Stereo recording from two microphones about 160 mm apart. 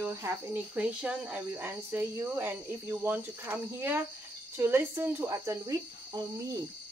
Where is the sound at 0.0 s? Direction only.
20° right (ahead or behind).